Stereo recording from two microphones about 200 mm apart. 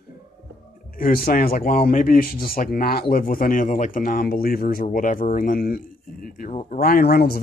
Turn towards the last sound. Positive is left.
turn(degrees=50)  # may be behind; listen again after turning